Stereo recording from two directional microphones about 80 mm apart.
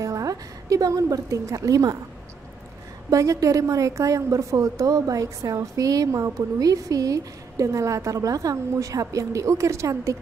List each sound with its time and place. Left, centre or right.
0.0 s a woman's voice: right
3.1 s a woman's voice: right